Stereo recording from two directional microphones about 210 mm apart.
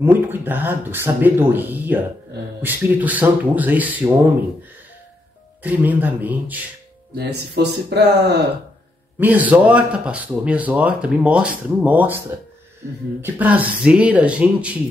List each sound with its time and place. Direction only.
0.0 s speech: 10° right (ahead or behind)
5.6 s speech: 10° right (ahead or behind)
7.2 s speech: 50° right (ahead or behind)
9.2 s speech: 5° right (ahead or behind)
13.2 s speech: 10° right (ahead or behind)